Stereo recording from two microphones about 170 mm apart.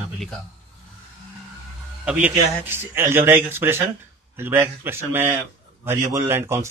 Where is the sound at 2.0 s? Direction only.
10° right (ahead or behind).